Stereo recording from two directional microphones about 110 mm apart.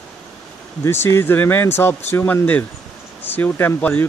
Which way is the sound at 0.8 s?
20° left (ahead or behind).